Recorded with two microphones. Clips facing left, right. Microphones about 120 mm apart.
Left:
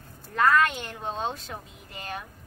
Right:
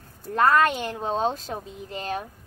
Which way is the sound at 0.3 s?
40° right (ahead or behind).